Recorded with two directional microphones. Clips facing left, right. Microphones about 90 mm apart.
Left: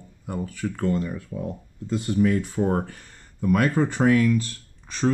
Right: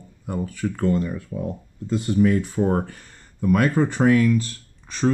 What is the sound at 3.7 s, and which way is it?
Speech, 45° right (ahead or behind).